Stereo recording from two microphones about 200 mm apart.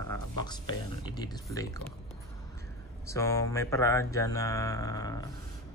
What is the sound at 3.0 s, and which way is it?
A man's voice, 15° left (ahead or behind).